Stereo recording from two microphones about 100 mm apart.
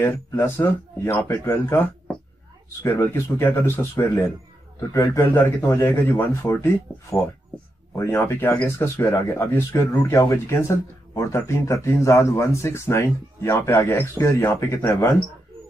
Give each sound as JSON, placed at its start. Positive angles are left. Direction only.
{"t": 0.0, "sound": "speech", "side_deg": 25}
{"t": 4.9, "sound": "a man's voice", "side_deg": 40}
{"t": 5.2, "sound": "speech", "side_deg": 20}